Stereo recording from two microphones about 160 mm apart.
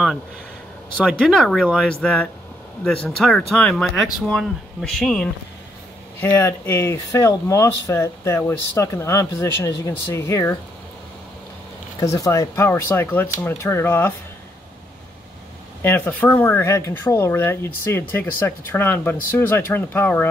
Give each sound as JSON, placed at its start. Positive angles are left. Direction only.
{"t": 0.9, "sound": "speech", "side_deg": 5}
{"t": 6.2, "sound": "speech", "side_deg": 15}
{"t": 12.0, "sound": "speech", "side_deg": 20}
{"t": 15.8, "sound": "speech", "side_deg": 10}